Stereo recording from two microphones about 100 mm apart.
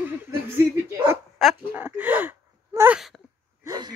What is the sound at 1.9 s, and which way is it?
Gasp, 15° right (ahead or behind).